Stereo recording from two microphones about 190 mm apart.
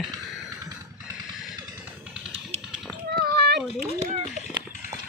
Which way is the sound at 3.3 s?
60° right (ahead or behind).